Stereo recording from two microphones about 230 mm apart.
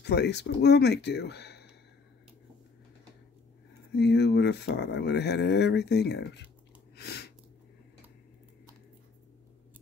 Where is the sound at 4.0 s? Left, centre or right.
Left.